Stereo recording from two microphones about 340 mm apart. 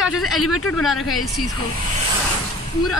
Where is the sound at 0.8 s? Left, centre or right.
Centre.